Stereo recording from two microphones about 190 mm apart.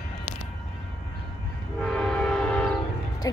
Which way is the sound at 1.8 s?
5° left (ahead or behind).